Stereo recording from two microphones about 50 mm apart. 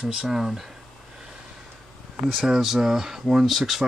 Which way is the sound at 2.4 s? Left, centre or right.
Centre.